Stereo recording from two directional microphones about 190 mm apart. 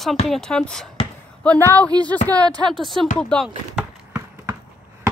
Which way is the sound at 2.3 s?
20° right (ahead or behind).